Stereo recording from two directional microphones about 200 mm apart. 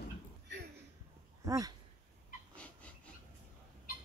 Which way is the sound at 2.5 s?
5° left (ahead or behind).